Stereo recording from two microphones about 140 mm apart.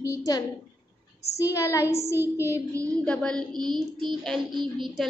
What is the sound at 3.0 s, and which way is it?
Speech, 5° left (ahead or behind).